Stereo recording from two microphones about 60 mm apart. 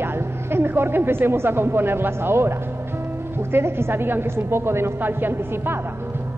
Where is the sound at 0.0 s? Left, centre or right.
Right.